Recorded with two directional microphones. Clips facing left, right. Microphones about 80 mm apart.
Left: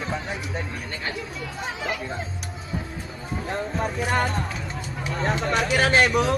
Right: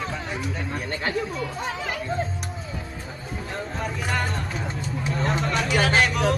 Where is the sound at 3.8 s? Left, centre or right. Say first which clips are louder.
Left 3 dB; left.